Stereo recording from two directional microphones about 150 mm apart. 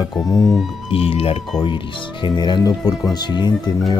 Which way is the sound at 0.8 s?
40° left (ahead or behind).